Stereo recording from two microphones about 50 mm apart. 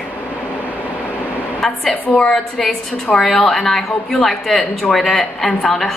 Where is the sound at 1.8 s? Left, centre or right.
Left.